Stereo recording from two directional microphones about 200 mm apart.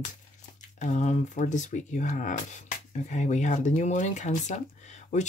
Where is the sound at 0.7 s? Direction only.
35° left (ahead or behind).